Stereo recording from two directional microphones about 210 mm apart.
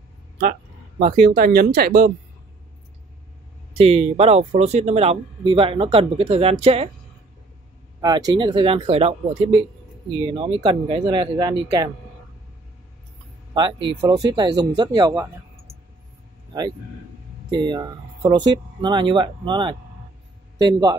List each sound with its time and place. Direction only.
0.4 s speech: 35° right (ahead or behind)
3.7 s speech: 30° right (ahead or behind)
8.0 s speech: 20° right (ahead or behind)
13.6 s speech: 25° right (ahead or behind)
17.5 s a man's voice: 20° right (ahead or behind)